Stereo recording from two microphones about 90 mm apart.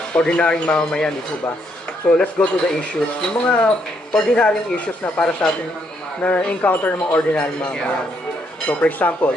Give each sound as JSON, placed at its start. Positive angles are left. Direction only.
{"t": 0.1, "sound": "speech", "side_deg": 10}
{"t": 2.1, "sound": "speech", "side_deg": 15}